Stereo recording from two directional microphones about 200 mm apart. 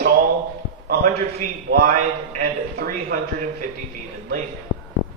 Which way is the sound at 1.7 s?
40° right (ahead or behind).